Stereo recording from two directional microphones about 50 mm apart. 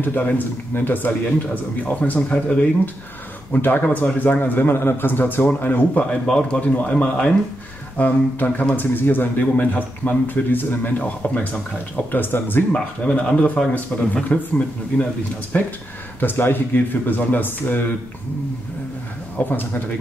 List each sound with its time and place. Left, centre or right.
0.0 s speech: left
2.1 s speech: centre
3.5 s speech: left
6.2 s speech: left
12.1 s speech: left
13.0 s speech: left
15.5 s speech: left
19.3 s speech: left